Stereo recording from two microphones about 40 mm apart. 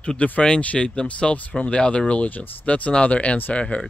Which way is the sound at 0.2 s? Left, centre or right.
Left.